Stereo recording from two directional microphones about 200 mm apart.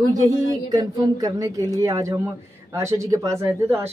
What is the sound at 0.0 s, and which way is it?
Speech, 20° right (ahead or behind).